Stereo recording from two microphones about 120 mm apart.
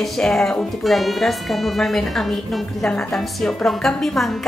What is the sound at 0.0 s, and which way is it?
A woman's voice, 5° left (ahead or behind).